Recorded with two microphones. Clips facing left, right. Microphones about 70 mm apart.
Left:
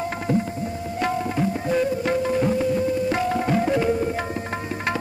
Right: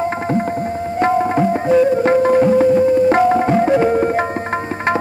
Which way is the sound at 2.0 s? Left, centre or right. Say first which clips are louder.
Right 9 dB; right.